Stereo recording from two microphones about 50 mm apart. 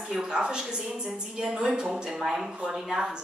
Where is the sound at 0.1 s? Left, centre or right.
Centre.